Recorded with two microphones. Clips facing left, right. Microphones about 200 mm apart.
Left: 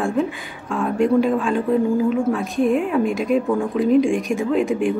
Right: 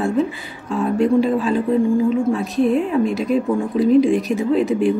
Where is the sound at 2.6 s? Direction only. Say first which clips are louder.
Right 1 dB; 35° right (ahead or behind).